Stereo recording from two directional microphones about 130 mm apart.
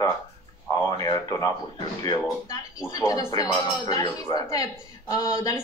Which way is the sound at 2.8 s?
25° left (ahead or behind).